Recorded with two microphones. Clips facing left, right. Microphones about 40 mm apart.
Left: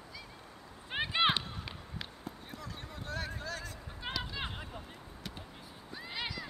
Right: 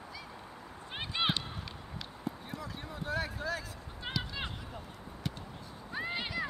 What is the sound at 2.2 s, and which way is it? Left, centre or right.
Basketball bounce, centre.